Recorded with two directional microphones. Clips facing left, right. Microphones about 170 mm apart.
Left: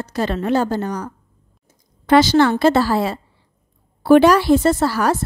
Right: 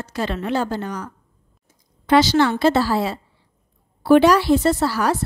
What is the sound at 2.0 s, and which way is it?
Speech, 50° left (ahead or behind).